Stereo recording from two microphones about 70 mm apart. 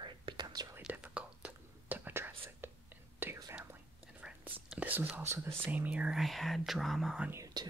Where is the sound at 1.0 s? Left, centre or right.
Centre.